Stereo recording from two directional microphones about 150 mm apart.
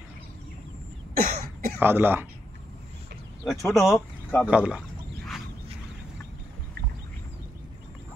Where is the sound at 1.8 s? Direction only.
15° right (ahead or behind).